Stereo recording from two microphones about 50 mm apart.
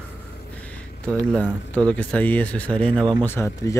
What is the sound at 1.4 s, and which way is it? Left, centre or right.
Speech, left.